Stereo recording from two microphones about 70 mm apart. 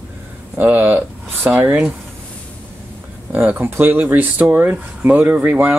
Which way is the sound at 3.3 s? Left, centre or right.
Right.